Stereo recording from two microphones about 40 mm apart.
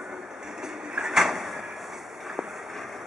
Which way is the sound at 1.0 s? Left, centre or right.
Centre.